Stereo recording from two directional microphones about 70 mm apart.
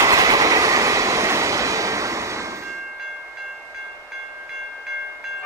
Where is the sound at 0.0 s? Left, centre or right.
Right.